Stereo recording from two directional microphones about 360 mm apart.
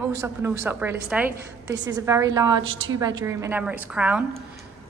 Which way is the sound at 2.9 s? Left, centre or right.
Centre.